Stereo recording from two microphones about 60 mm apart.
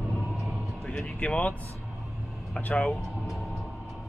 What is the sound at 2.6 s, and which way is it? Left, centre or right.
Speech, centre.